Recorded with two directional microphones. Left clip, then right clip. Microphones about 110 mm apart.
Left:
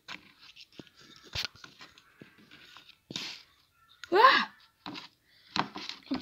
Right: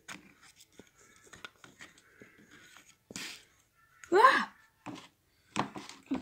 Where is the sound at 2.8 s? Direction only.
15° left (ahead or behind).